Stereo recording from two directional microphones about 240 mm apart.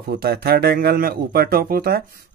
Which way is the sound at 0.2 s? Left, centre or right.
Right.